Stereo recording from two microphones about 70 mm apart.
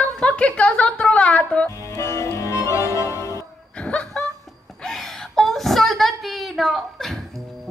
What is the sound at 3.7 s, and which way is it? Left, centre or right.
Snicker, centre.